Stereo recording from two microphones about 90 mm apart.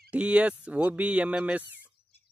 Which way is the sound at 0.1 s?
15° right (ahead or behind).